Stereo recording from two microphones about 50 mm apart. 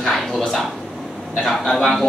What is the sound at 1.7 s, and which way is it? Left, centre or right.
Speech, centre.